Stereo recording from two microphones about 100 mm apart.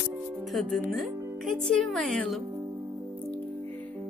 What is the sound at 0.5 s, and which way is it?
Speech, centre (ahead or behind).